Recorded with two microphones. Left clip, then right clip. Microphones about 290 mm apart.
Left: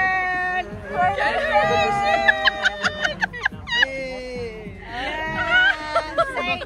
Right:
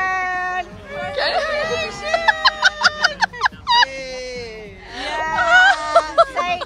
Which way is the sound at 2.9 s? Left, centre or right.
Right.